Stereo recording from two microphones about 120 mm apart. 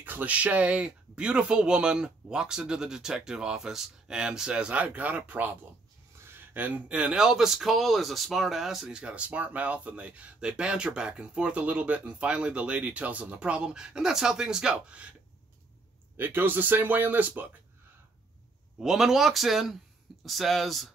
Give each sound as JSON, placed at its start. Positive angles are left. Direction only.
{"t": 0.0, "sound": "speech", "side_deg": -15}
{"t": 16.2, "sound": "speech", "side_deg": -15}
{"t": 18.8, "sound": "speech", "side_deg": -5}